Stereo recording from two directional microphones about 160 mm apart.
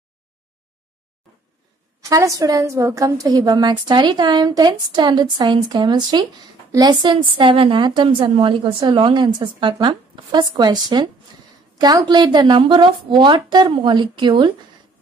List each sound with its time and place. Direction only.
2.0 s a woman's voice: 20° right (ahead or behind)